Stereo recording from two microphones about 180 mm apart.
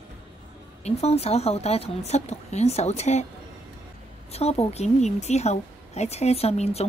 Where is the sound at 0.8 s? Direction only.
35° left (ahead or behind).